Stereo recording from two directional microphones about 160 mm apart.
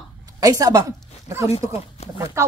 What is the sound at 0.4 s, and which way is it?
Speech, 20° right (ahead or behind).